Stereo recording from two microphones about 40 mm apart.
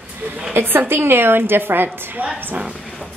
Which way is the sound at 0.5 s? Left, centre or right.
Right.